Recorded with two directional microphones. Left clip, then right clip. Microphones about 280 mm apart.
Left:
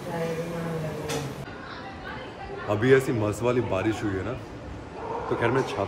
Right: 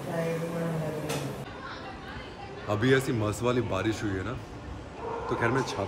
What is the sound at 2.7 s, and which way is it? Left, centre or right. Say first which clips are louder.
A man's voice: left 4 dB; centre.